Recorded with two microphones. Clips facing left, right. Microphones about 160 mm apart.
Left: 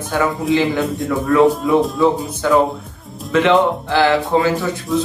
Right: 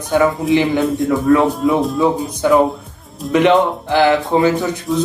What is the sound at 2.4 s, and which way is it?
Speech, 15° right (ahead or behind).